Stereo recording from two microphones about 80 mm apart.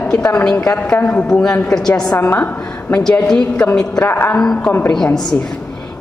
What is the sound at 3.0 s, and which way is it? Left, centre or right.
A woman's voice, centre.